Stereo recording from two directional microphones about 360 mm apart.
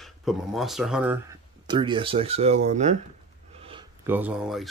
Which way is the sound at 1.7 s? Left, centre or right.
Centre.